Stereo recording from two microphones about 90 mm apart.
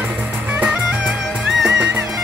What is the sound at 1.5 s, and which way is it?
Music, 5° right (ahead or behind).